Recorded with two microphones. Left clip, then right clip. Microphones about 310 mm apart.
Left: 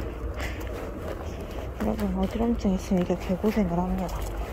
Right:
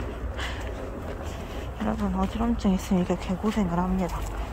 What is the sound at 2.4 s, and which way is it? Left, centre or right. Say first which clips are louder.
Speech: left 2 dB; centre.